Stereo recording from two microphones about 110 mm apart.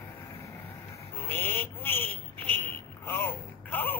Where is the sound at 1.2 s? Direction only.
20° left (ahead or behind).